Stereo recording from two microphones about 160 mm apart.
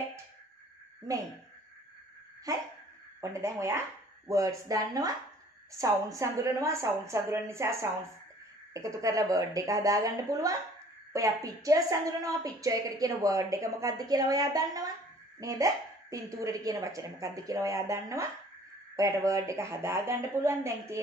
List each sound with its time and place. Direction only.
3.2 s a woman's voice: 20° right (ahead or behind)